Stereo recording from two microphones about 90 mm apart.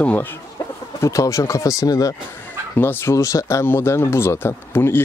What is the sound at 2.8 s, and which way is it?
Speech, 25° left (ahead or behind).